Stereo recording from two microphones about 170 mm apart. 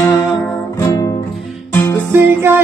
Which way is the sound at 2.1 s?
15° right (ahead or behind).